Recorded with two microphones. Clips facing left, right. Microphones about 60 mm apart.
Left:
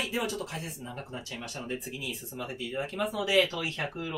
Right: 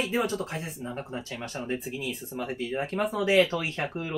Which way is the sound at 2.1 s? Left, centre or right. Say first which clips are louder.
Right 4 dB; right.